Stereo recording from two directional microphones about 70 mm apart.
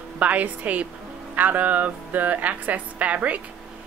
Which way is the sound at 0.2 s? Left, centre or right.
Right.